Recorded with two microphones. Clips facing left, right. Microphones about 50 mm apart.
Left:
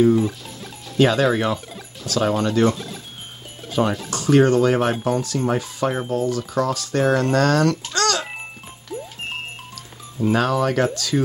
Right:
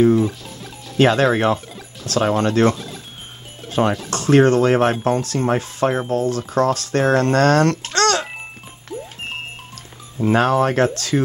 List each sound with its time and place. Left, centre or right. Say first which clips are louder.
0.2 s music: right 2 dB; centre
0.9 s speech: right 2 dB; right
2.7 s speech: right 1 dB; centre
3.6 s music: right 2 dB; right
4.1 s speech: right 2 dB; right
10.2 s speech: right 3 dB; right